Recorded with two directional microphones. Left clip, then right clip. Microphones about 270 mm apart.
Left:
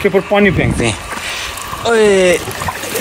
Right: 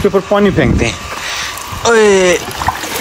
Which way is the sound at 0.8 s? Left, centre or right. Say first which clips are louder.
Right 1 dB; centre.